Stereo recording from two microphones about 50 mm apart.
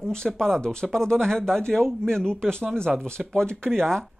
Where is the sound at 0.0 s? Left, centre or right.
Centre.